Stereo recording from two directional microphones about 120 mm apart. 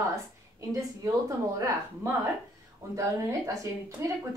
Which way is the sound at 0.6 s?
30° right (ahead or behind).